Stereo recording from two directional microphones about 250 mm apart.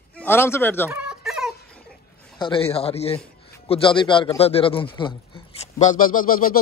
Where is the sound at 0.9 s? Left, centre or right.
Centre.